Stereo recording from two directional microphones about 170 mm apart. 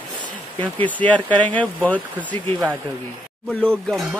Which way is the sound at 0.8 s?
10° left (ahead or behind).